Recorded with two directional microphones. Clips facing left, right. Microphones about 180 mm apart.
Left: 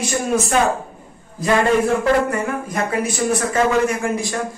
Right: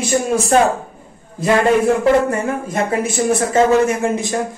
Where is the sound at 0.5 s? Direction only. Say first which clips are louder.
Right 6 dB; 35° right (ahead or behind).